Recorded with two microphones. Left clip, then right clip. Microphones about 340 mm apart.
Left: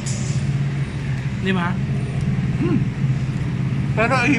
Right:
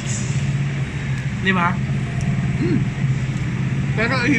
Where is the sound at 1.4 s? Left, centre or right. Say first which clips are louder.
Right 5 dB; centre.